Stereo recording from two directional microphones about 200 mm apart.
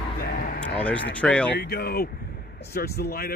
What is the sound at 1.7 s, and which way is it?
Speech, 50° left (ahead or behind).